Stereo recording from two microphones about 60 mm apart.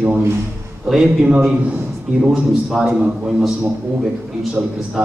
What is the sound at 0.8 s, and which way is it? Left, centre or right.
A man's voice, centre.